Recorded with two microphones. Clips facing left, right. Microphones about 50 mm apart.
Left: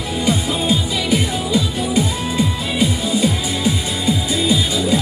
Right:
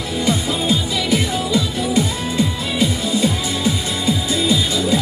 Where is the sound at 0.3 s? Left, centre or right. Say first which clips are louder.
Left 1 dB; centre.